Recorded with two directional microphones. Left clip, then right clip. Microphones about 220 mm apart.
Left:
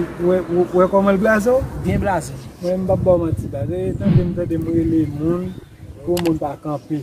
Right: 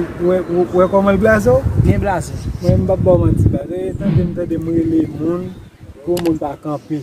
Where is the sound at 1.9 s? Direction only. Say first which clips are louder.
Right 1 dB; 5° left (ahead or behind).